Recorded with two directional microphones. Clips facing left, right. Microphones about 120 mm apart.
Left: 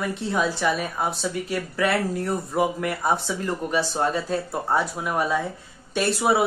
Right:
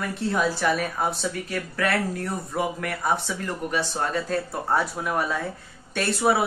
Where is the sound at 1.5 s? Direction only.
20° left (ahead or behind).